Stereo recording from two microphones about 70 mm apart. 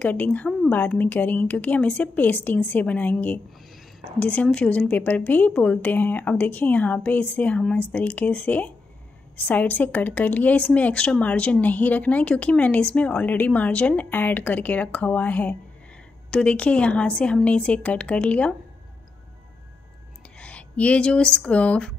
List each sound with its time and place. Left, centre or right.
0.0 s speech: left
16.3 s a woman's voice: centre
20.3 s speech: centre